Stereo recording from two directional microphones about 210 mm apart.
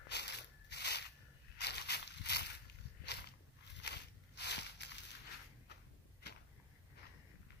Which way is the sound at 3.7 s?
55° left (ahead or behind).